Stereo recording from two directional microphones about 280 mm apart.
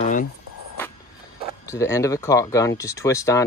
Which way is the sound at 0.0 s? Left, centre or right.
Left.